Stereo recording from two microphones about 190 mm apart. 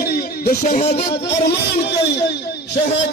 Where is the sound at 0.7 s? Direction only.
35° left (ahead or behind).